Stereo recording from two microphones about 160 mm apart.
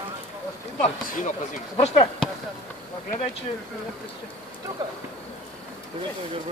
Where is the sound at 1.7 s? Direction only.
40° left (ahead or behind).